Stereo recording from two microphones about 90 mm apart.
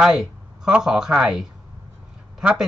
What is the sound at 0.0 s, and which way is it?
Speech, 5° right (ahead or behind).